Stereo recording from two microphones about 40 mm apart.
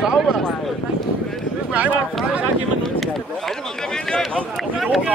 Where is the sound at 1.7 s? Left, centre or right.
Right.